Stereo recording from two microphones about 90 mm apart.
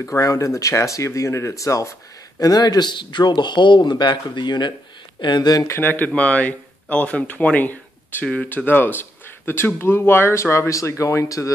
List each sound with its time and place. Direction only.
0.0 s speech: 35° left (ahead or behind)
5.7 s speech: 25° left (ahead or behind); by 11.5 s 40° left (ahead or behind)